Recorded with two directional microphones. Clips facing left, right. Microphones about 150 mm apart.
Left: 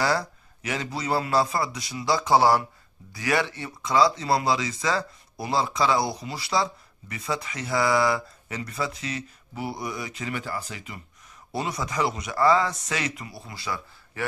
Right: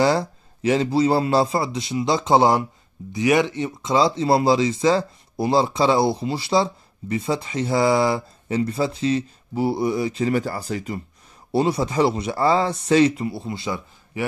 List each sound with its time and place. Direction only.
0.0 s speech: 25° right (ahead or behind)